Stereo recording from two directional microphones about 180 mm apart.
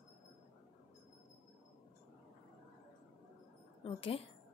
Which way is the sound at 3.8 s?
30° left (ahead or behind).